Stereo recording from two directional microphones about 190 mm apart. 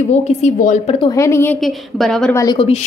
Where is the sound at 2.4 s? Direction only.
25° left (ahead or behind).